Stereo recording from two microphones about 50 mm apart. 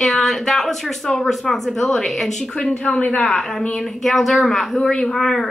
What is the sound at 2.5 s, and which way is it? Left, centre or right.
Speech, centre.